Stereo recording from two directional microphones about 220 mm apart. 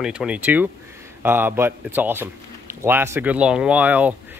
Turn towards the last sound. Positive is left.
turn(degrees=-5)  # may be behind; listen again after turning